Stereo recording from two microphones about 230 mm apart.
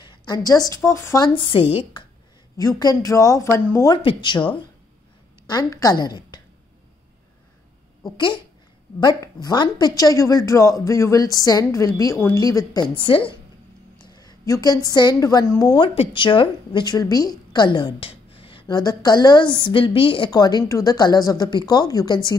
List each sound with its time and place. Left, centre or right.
0.0 s a woman's voice: centre
5.5 s a woman's voice: centre
9.0 s a woman's voice: centre